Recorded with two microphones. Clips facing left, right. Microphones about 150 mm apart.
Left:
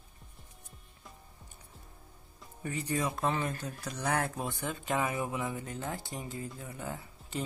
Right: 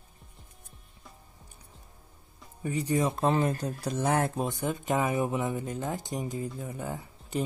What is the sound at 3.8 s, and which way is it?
Speech, 25° right (ahead or behind).